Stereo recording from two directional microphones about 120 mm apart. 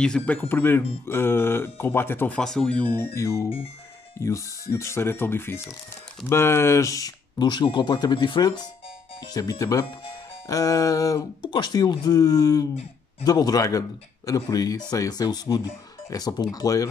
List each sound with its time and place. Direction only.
0.0 s a man's voice: 10° left (ahead or behind); by 16.8 s 30° left (ahead or behind)